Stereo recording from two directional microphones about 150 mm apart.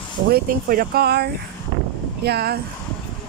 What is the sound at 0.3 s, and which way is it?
Speech, 75° right (ahead or behind).